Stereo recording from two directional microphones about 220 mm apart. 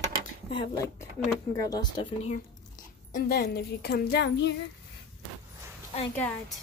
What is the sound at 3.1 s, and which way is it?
Speech, 40° left (ahead or behind).